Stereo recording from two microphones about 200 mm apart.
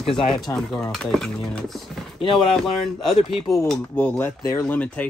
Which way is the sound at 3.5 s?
Centre (ahead or behind).